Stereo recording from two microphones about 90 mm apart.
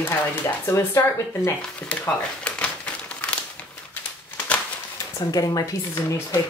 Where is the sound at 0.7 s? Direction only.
35° left (ahead or behind).